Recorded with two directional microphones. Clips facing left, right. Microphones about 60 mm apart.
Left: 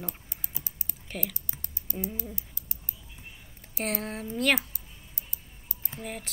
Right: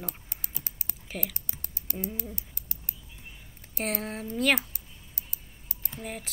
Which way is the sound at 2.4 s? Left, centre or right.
Right.